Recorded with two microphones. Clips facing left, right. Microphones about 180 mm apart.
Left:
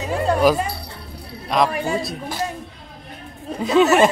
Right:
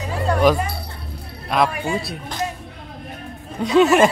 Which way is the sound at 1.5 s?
5° right (ahead or behind).